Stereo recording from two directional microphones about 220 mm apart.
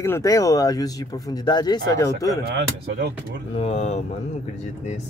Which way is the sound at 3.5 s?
30° left (ahead or behind).